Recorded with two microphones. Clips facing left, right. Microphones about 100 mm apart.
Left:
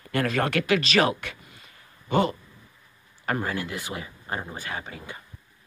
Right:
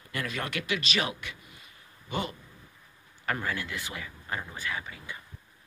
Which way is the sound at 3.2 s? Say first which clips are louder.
Left 4 dB; 35° left (ahead or behind).